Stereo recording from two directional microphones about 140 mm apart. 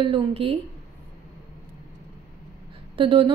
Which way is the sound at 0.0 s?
40° right (ahead or behind).